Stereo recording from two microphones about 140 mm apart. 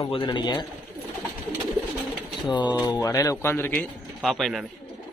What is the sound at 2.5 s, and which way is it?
Speech, 35° left (ahead or behind).